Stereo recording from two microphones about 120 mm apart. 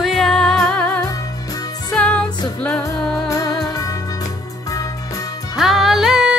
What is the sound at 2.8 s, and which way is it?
Music, 30° left (ahead or behind).